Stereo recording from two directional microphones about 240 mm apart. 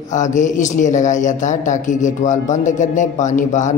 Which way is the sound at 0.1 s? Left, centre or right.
Left.